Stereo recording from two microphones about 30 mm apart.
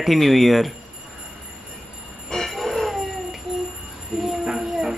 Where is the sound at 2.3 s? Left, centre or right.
Centre.